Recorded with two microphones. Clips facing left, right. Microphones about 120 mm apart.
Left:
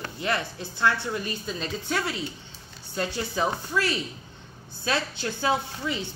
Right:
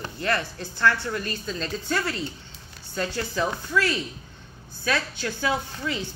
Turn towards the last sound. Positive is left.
turn(degrees=25)  # may be behind; listen again after turning